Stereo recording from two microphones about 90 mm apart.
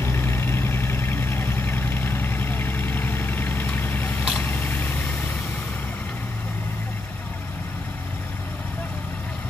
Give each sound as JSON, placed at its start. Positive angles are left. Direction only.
{"t": 0.0, "sound": "vehicle", "side_deg": 25}